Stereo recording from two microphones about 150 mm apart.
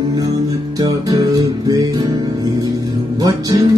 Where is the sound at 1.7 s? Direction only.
25° right (ahead or behind).